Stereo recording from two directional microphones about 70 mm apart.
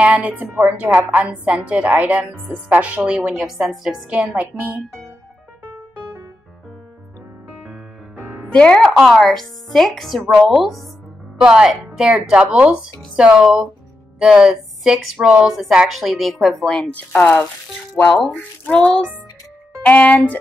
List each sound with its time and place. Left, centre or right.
0.0 s speech: right
3.4 s a woman's voice: centre
4.2 s speech: right
8.5 s speech: centre
8.9 s a woman's voice: centre
16.7 s speech: centre